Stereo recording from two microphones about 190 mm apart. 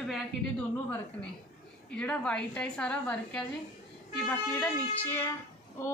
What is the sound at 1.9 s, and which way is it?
A woman's voice, 5° left (ahead or behind).